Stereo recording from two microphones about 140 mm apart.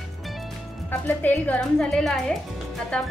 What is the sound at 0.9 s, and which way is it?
Speech, 10° left (ahead or behind).